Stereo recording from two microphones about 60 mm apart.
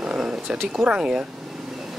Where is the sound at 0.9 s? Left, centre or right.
Centre.